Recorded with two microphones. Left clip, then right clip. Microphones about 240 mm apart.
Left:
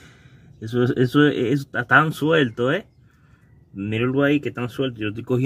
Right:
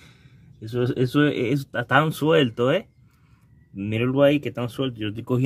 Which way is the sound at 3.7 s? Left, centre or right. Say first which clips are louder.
Even; centre.